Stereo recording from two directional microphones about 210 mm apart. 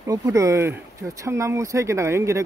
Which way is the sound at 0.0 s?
15° right (ahead or behind).